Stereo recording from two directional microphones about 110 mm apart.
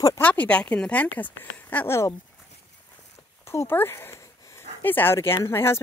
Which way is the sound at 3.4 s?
20° left (ahead or behind).